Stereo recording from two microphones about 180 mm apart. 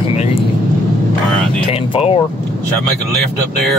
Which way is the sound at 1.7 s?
30° left (ahead or behind).